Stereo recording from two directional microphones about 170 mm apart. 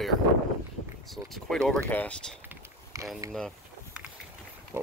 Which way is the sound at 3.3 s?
Centre (ahead or behind).